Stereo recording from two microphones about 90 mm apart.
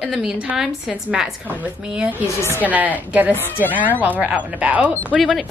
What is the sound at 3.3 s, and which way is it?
Speech, 20° left (ahead or behind).